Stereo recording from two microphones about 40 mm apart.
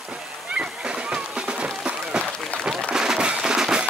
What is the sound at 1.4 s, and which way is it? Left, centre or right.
Music, right.